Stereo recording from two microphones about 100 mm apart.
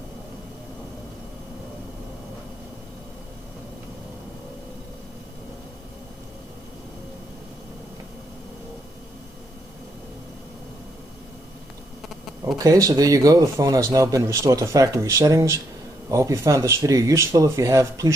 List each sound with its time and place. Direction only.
12.5 s a man's voice: 35° right (ahead or behind)